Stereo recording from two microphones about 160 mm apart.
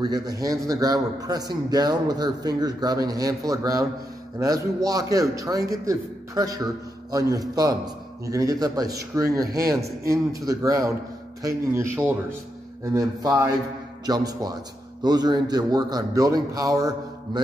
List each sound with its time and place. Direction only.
0.0 s a man's voice: 25° right (ahead or behind)